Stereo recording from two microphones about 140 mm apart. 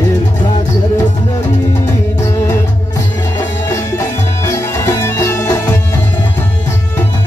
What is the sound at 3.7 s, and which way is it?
Music, 20° left (ahead or behind).